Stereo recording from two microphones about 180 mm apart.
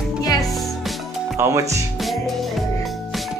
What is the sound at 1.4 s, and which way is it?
Speech, 15° right (ahead or behind).